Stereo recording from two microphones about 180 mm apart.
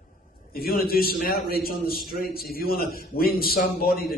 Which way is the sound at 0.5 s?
55° left (ahead or behind).